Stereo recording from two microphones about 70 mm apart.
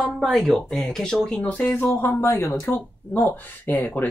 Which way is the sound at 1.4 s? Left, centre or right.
Left.